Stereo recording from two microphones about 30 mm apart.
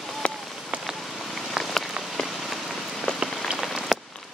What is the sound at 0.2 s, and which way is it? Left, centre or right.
Rain on surface, left.